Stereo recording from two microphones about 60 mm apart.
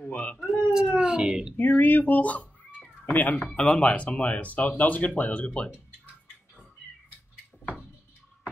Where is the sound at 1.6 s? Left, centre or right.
Left.